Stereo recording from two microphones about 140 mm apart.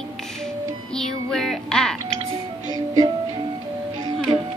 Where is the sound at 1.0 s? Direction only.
5° left (ahead or behind).